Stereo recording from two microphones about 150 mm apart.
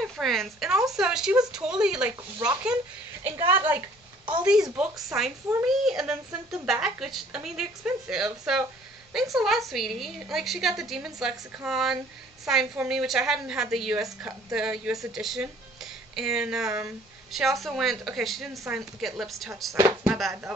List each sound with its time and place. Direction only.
0.0 s a woman's voice: centre (ahead or behind)
19.7 s a woman's voice: 15° right (ahead or behind)
20.1 s a woman's voice: centre (ahead or behind)